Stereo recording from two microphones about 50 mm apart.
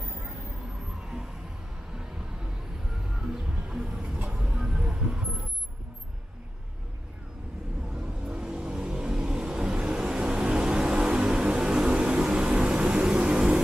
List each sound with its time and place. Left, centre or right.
1.0 s vehicle: centre
2.0 s music: centre
4.3 s vehicle: centre
7.9 s vehicle: centre